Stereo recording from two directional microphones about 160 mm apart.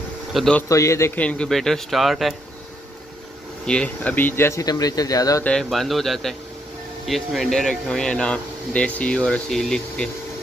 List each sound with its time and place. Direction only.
0.3 s a man's voice: centre (ahead or behind)
0.6 s speech: 20° left (ahead or behind); by 2.3 s centre (ahead or behind)
3.6 s speech: 5° left (ahead or behind); by 5.4 s 20° left (ahead or behind)
5.4 s speech: 5° left (ahead or behind)